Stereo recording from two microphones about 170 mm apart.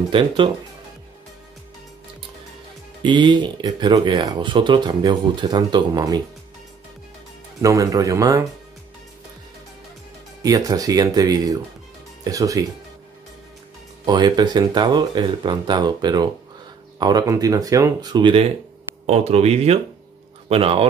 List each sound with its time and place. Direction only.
0.1 s speech: 30° right (ahead or behind)
3.0 s speech: 30° right (ahead or behind)
7.6 s speech: 20° right (ahead or behind)
10.4 s speech: 20° right (ahead or behind)
14.0 s speech: 25° right (ahead or behind)
19.0 s speech: 40° right (ahead or behind)